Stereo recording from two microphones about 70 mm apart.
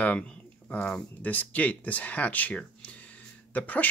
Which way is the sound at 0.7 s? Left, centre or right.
Centre.